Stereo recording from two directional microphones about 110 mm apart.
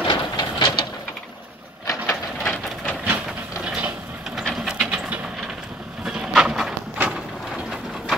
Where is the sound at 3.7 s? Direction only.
10° right (ahead or behind).